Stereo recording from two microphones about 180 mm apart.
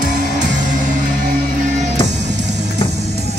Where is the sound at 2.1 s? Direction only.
70° right (ahead or behind).